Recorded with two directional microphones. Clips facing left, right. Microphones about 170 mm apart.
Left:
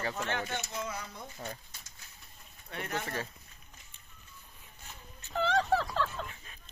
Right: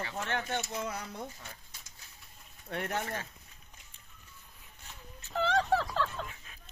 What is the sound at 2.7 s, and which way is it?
Speech, 60° right (ahead or behind).